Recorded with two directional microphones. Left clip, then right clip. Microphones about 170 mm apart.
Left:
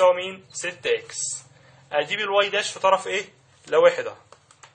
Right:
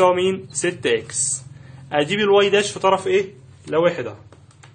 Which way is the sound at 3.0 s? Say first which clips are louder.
Right 8 dB; centre (ahead or behind).